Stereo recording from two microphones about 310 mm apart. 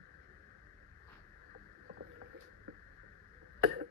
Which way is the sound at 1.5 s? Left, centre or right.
Right.